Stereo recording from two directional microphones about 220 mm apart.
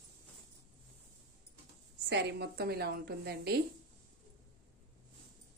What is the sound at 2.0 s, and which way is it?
A woman's voice, 50° right (ahead or behind).